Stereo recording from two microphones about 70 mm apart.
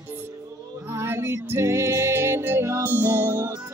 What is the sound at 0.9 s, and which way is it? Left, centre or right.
Music, right.